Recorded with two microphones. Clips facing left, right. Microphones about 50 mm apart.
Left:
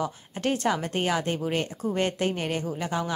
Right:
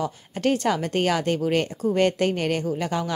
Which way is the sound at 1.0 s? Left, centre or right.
Centre.